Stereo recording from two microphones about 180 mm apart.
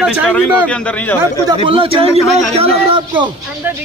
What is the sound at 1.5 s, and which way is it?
A man's voice, 30° right (ahead or behind).